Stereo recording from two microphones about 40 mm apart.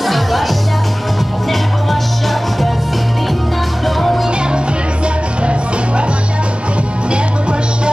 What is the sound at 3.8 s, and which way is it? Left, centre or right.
Music, centre.